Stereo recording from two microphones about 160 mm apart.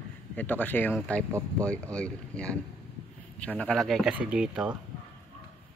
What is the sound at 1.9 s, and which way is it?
Speech, 5° left (ahead or behind).